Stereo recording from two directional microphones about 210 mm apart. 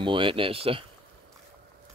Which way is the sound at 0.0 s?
25° right (ahead or behind).